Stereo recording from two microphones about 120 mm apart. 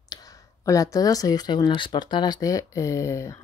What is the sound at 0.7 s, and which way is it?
Speech, 30° left (ahead or behind).